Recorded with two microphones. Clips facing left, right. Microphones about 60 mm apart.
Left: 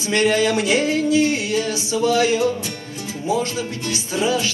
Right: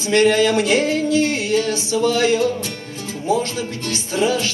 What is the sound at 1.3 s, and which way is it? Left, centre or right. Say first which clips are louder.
Music: right 2 dB; centre.